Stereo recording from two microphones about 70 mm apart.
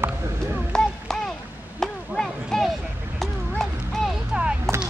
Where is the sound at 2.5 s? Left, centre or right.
Centre.